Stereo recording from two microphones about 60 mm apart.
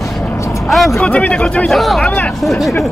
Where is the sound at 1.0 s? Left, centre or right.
Left.